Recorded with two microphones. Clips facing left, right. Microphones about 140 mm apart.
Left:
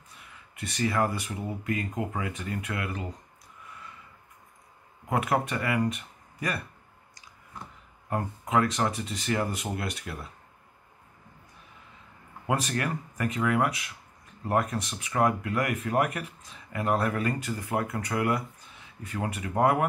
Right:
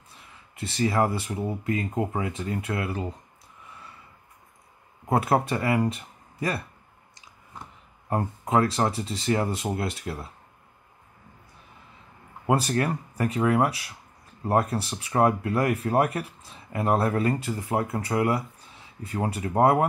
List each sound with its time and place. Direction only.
0.1 s speech: 30° right (ahead or behind)
5.0 s speech: 35° right (ahead or behind)
8.1 s speech: 30° right (ahead or behind)
12.4 s speech: 30° right (ahead or behind)